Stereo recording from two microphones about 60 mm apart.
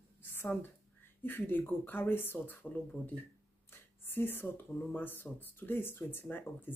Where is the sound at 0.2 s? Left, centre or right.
Left.